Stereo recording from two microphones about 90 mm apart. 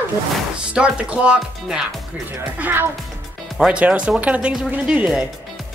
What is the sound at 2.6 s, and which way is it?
Speech, 20° right (ahead or behind).